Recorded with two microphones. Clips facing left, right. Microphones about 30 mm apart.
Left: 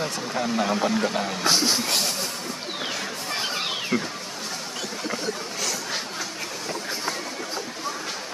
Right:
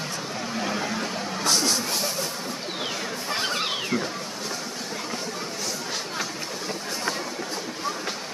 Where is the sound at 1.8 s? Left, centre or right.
Left.